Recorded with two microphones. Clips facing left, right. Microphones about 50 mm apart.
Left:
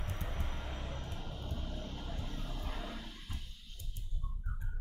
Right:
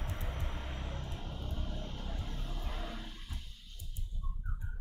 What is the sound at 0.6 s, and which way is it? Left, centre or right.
Vehicle, centre.